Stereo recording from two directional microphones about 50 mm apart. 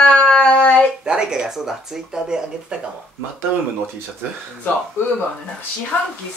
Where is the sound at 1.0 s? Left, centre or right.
Centre.